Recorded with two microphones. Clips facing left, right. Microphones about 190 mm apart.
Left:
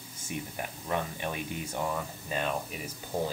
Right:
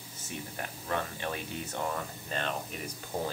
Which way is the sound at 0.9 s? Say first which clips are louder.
Left 1 dB; 15° left (ahead or behind).